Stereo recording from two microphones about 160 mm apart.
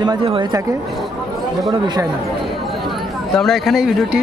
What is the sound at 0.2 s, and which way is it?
Speech, 35° right (ahead or behind).